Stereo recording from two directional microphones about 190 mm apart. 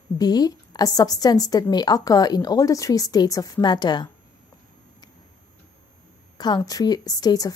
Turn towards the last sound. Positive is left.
turn(degrees=20)  # may be behind; listen again after turning